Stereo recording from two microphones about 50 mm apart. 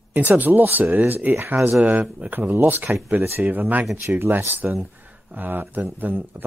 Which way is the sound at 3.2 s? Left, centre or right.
Right.